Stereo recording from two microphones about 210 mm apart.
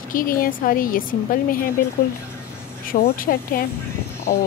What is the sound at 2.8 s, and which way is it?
Speech, 45° left (ahead or behind).